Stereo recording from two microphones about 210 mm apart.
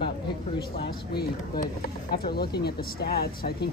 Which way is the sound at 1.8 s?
50° left (ahead or behind).